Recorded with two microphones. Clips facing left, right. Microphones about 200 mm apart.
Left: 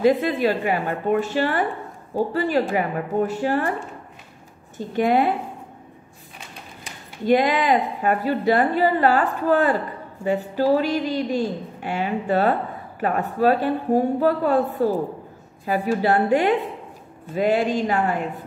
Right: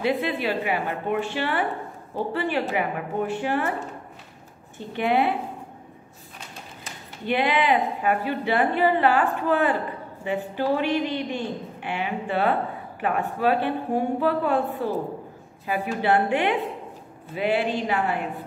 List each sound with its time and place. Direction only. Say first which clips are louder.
0.0 s a woman's voice: left 6 dB; 45° left (ahead or behind)
4.7 s a woman's voice: left 4 dB; 40° left (ahead or behind)
7.2 s a woman's voice: left 4 dB; 40° left (ahead or behind)